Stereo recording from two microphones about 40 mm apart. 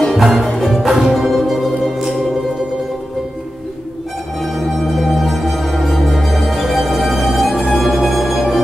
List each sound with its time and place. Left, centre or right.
0.1 s music: centre
0.7 s music: centre
4.4 s music: centre